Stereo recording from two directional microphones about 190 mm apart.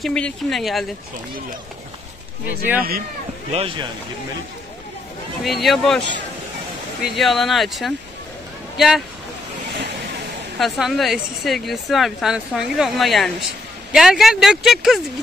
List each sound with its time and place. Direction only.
0.0 s speech: 5° left (ahead or behind)
3.5 s speech: 25° right (ahead or behind)
5.4 s speech: centre (ahead or behind)
10.6 s speech: centre (ahead or behind)